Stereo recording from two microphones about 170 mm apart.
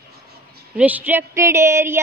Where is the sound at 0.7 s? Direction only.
10° right (ahead or behind).